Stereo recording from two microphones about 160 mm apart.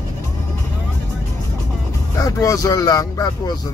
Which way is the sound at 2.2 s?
20° left (ahead or behind).